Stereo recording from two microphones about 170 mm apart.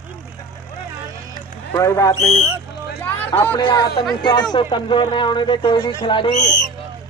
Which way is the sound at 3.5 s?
25° left (ahead or behind).